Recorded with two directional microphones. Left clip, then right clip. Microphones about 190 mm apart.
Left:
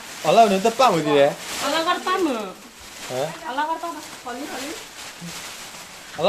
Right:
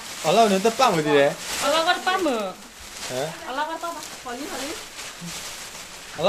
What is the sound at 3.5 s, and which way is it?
Speech, 40° right (ahead or behind).